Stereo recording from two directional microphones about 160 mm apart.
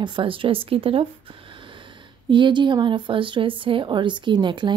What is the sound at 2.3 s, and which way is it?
A woman's voice, 30° right (ahead or behind).